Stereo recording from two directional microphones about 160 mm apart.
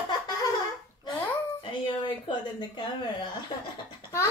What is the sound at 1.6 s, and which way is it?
A woman's voice, 30° left (ahead or behind).